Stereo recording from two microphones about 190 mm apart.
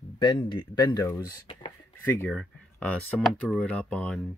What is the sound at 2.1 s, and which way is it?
Speech, 10° left (ahead or behind).